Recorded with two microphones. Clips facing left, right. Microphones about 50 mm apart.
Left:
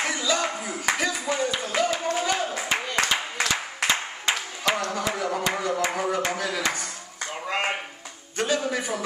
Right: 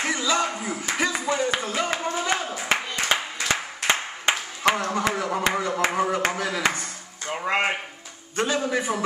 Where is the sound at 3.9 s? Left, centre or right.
Right.